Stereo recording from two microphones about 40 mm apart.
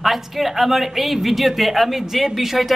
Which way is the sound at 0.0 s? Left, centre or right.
Centre.